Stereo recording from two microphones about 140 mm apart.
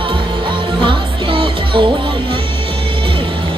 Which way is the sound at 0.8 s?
35° right (ahead or behind).